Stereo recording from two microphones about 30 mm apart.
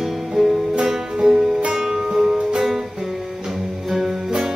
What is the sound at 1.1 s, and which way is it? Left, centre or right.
Music, right.